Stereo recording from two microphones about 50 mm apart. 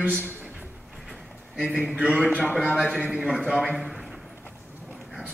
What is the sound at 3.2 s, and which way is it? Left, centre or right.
Speech, centre.